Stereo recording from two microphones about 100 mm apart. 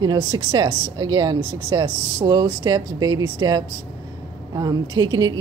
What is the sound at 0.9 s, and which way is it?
Speech, 40° right (ahead or behind).